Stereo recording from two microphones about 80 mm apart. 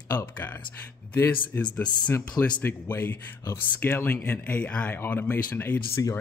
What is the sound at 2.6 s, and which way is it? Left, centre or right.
Speech, left.